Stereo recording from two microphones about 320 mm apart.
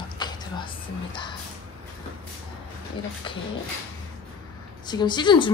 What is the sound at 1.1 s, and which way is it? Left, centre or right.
Speech, centre.